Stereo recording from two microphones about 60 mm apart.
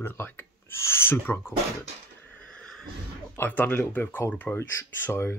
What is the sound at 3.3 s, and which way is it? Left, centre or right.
Speech, left.